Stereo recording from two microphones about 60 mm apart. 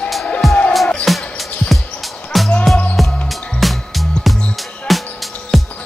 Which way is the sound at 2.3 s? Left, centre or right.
Centre.